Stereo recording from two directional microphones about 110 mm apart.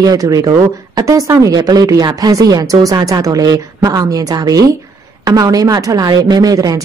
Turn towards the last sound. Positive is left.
turn(degrees=-35)  # may be behind; listen again after turning